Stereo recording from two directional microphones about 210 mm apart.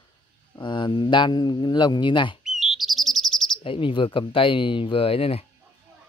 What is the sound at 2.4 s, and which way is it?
Bird, centre (ahead or behind).